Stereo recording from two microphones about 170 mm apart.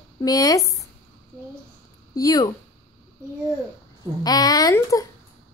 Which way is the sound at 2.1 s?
20° left (ahead or behind).